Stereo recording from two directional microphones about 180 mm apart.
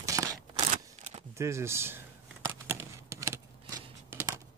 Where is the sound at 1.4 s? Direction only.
15° right (ahead or behind).